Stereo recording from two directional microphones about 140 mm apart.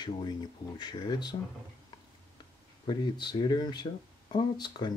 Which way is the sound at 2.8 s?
30° left (ahead or behind).